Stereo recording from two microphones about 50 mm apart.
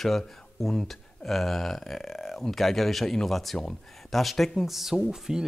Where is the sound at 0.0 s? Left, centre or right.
Centre.